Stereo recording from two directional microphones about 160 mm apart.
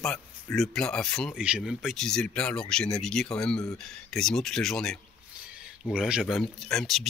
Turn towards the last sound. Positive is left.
turn(degrees=0)  # may be behind; listen again after turning